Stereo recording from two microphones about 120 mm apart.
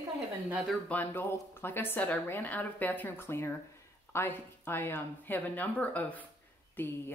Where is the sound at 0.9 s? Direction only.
15° left (ahead or behind).